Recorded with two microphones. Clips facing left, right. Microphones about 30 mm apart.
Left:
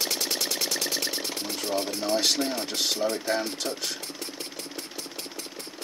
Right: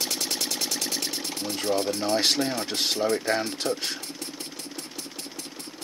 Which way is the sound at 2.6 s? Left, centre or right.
Right.